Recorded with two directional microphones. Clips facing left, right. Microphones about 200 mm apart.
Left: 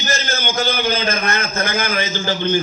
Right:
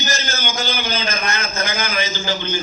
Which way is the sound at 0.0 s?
55° left (ahead or behind).